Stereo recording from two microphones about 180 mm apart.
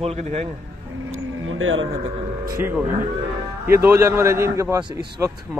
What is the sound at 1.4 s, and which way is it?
Music, 90° right.